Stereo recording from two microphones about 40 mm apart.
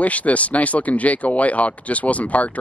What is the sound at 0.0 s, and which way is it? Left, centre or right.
Speech, left.